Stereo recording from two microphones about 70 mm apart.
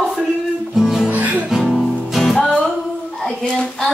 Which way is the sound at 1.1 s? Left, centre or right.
Right.